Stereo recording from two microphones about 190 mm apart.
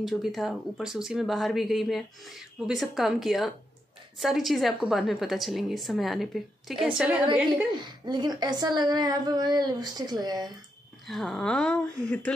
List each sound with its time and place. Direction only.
0.0 s speech: centre (ahead or behind)
7.8 s speech: 25° right (ahead or behind)
11.1 s speech: centre (ahead or behind)